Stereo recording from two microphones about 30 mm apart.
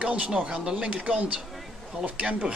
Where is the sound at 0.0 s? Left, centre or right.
Right.